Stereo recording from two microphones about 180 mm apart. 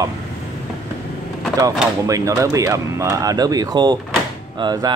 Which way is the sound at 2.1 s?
15° right (ahead or behind).